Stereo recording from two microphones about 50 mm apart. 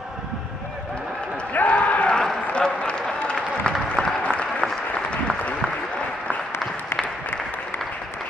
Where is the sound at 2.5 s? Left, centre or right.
Left.